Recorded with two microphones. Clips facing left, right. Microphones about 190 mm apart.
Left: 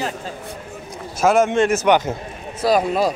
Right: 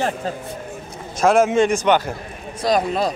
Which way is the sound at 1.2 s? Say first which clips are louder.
Right 1 dB; centre (ahead or behind).